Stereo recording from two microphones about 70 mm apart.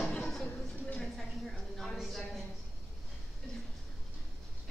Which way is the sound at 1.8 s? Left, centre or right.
Centre.